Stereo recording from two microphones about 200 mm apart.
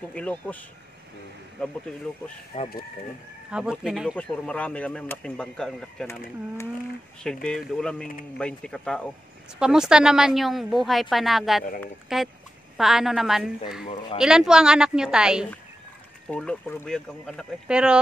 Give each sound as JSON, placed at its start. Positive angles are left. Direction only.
{"t": 0.1, "sound": "speech", "side_deg": 5}
{"t": 2.5, "sound": "speech", "side_deg": 30}
{"t": 3.4, "sound": "a woman's voice", "side_deg": -5}
{"t": 7.4, "sound": "a woman's voice", "side_deg": 5}